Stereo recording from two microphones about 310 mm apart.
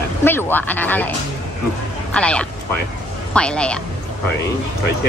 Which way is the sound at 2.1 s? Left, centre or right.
Centre.